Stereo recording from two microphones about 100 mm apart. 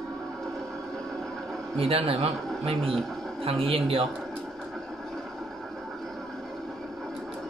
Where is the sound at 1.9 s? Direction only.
85° right.